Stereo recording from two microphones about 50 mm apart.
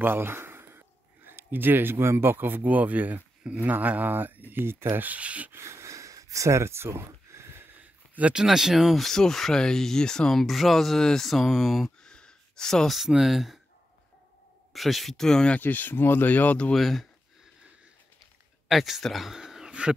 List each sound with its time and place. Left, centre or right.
0.0 s speech: right
4.9 s speech: right
5.6 s a sound: right
7.7 s a sound: right
8.5 s speech: centre
10.4 s speech: centre
12.0 s a sound: centre
12.9 s speech: centre
14.7 s speech: centre
15.6 s speech: left
16.7 s speech: centre
18.7 s speech: centre
19.3 s a sound: centre